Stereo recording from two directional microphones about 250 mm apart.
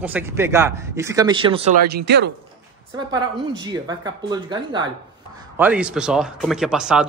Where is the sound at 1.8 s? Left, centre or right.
Right.